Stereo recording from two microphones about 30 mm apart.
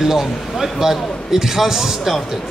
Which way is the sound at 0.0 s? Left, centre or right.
Centre.